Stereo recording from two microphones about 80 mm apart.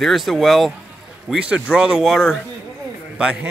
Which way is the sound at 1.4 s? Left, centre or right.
Centre.